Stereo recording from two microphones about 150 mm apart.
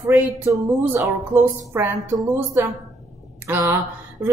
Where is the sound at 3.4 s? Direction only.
15° right (ahead or behind).